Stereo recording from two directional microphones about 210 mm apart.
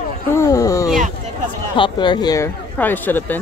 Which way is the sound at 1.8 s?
20° left (ahead or behind).